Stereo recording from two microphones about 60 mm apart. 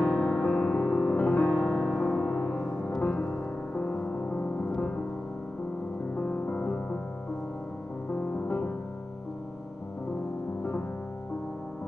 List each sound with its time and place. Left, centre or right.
0.0 s music: left
4.3 s music: left
4.7 s music: centre
6.1 s music: left
8.1 s music: left